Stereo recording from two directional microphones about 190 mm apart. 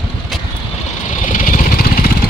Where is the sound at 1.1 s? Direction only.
45° left (ahead or behind).